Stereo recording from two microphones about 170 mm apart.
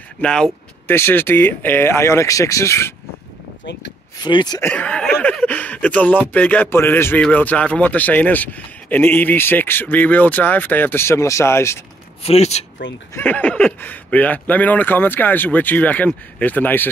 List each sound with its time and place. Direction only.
0.2 s speech: 5° left (ahead or behind)
4.2 s speech: 25° left (ahead or behind)
4.6 s speech: 5° left (ahead or behind)
12.2 s speech: 40° left (ahead or behind)
13.1 s speech: 10° left (ahead or behind)